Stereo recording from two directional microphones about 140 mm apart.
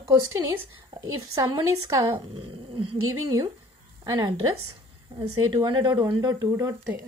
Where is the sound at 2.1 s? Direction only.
40° right (ahead or behind).